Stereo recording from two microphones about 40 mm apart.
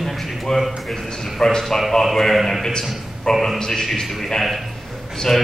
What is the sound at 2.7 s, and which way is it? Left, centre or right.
A man's voice, centre.